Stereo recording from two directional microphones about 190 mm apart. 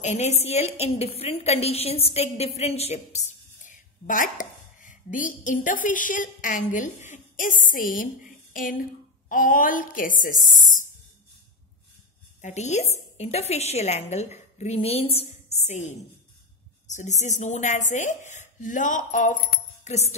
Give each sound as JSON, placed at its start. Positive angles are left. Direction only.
{"t": 0.0, "sound": "a woman's voice", "side_deg": 35}
{"t": 12.4, "sound": "a woman's voice", "side_deg": 40}